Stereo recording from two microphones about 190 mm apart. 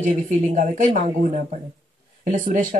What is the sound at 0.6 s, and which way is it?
Speech, 45° right (ahead or behind).